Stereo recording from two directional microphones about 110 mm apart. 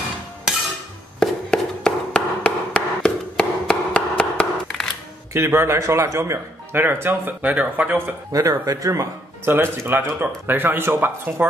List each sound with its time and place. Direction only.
1.2 s chop: 5° left (ahead or behind)
5.3 s speech: 25° right (ahead or behind)
8.3 s speech: 30° right (ahead or behind)
9.5 s speech: 20° right (ahead or behind)